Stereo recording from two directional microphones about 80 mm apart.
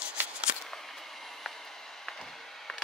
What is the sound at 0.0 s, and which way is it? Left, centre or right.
Shuffling cards, centre.